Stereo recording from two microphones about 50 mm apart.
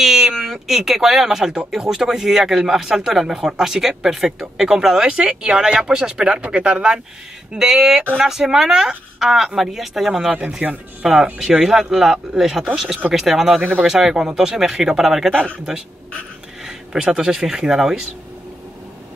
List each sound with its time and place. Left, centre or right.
0.0 s a man's voice: centre
10.6 s speech: right
11.6 s a man's voice: centre
13.6 s speech: right
13.8 s a man's voice: centre
15.3 s speech: right
16.6 s speech: centre